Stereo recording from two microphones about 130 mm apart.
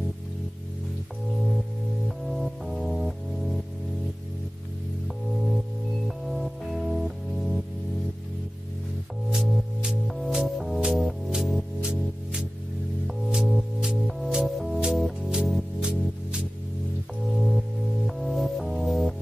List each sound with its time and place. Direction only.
2.0 s music: centre (ahead or behind)
6.0 s music: centre (ahead or behind)
9.3 s music: centre (ahead or behind)